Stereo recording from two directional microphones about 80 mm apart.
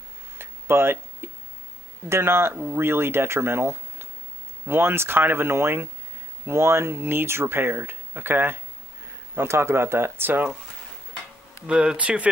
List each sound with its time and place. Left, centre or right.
0.4 s tick-tock: right
2.0 s speech: right
11.6 s speech: centre